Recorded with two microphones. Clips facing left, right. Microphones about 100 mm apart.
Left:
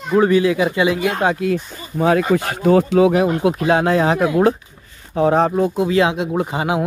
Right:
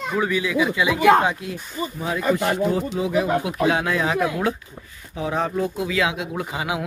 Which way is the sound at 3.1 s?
55° left (ahead or behind).